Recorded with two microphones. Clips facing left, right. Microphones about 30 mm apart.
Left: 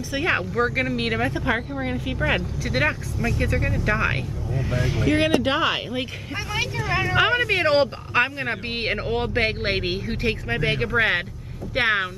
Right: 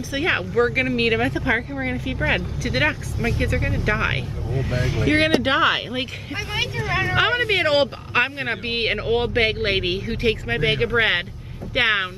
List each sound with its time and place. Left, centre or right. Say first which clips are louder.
0.2 s speech: right 3 dB; centre
1.3 s speech: right 2 dB; centre; by 5.7 s right
5.7 s speech: right 3 dB; right
6.8 s speech: even; centre